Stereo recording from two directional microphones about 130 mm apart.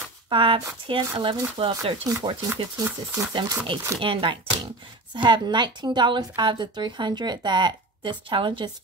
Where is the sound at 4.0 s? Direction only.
40° right (ahead or behind).